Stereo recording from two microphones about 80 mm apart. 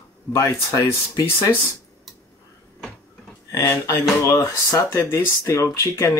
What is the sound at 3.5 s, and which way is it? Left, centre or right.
Speech, left.